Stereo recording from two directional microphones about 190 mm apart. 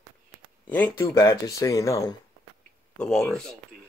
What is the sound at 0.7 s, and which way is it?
Speech, 10° left (ahead or behind).